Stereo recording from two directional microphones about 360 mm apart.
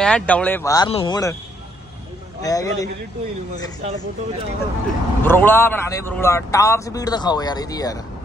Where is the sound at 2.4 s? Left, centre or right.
Centre.